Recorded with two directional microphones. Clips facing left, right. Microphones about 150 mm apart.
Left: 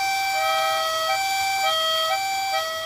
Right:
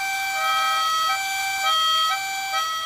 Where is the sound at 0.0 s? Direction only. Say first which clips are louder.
Left 4 dB; 35° left (ahead or behind).